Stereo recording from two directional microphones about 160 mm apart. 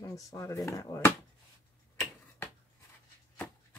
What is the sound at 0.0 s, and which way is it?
Speech, 20° left (ahead or behind).